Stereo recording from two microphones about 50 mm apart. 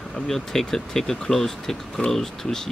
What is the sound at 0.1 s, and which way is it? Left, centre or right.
Speech, centre.